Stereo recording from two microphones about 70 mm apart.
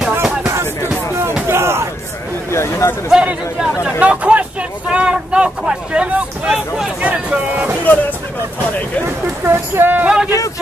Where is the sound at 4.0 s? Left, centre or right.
Centre.